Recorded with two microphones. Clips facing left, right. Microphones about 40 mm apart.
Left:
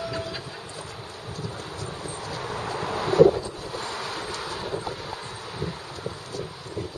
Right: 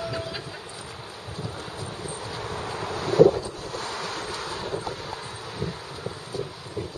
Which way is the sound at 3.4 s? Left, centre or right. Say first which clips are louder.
Even; centre.